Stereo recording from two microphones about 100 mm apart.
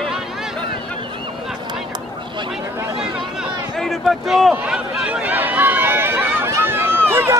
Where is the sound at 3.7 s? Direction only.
Centre (ahead or behind).